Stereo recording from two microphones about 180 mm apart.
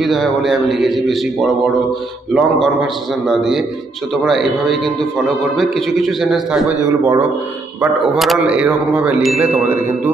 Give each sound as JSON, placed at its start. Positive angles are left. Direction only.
{"t": 0.0, "sound": "a man's voice", "side_deg": 0}
{"t": 6.9, "sound": "speech", "side_deg": -20}
{"t": 7.8, "sound": "speech", "side_deg": 0}